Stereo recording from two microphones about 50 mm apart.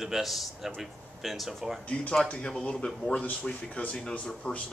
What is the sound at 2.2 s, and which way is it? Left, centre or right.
Speech, centre.